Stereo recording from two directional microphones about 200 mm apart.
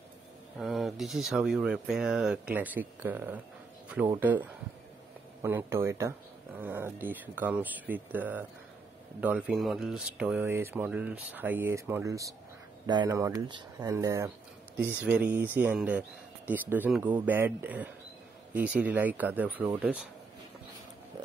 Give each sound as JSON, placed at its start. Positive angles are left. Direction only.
{"t": 0.6, "sound": "speech", "side_deg": 0}